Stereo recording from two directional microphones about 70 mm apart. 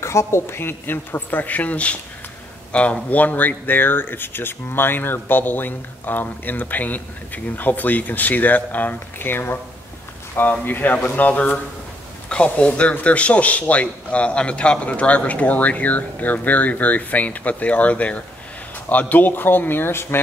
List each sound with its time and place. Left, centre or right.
0.0 s speech: left